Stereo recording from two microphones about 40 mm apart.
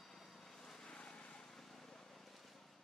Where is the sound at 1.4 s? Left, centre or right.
Centre.